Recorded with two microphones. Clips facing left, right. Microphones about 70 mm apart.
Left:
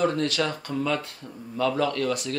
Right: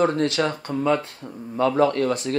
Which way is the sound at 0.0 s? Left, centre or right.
Right.